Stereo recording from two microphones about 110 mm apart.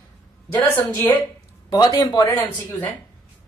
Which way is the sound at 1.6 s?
35° left (ahead or behind).